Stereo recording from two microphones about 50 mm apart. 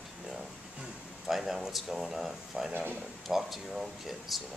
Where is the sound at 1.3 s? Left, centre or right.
Centre.